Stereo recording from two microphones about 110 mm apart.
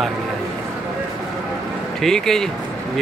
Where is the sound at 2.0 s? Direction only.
5° left (ahead or behind).